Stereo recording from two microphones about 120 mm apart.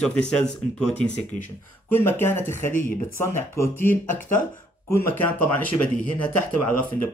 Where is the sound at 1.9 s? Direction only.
20° left (ahead or behind).